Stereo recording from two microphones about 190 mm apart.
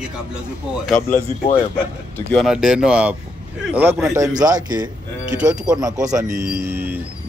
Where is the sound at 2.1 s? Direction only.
10° left (ahead or behind).